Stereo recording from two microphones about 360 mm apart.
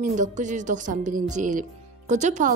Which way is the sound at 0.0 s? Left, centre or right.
Centre.